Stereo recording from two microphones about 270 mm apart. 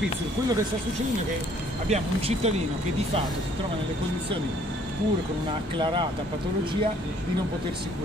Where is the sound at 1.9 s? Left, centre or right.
Right.